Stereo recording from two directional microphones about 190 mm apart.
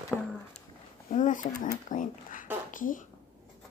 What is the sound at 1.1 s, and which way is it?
A woman's voice, 40° left (ahead or behind).